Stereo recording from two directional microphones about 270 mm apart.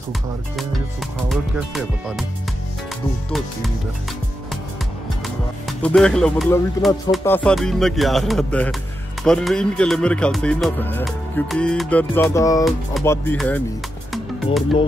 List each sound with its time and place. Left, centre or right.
1.3 s speech: centre
3.3 s speech: centre
5.2 s speech: centre